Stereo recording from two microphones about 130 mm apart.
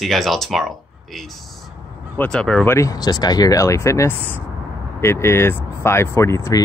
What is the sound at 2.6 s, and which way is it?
Speech, 20° left (ahead or behind).